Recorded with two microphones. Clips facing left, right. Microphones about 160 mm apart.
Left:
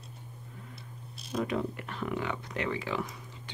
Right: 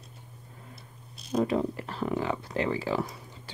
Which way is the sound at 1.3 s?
35° right (ahead or behind).